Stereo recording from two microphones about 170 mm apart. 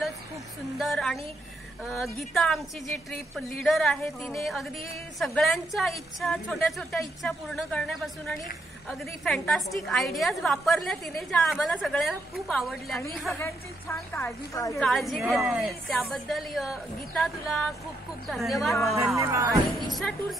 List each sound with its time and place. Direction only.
0.7 s a woman's voice: centre (ahead or behind)
13.3 s a woman's voice: 15° left (ahead or behind)
14.8 s a woman's voice: centre (ahead or behind)
19.1 s speech: 15° right (ahead or behind)
19.9 s a woman's voice: centre (ahead or behind)